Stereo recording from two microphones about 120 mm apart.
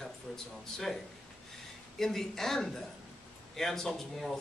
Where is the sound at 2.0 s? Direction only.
5° left (ahead or behind).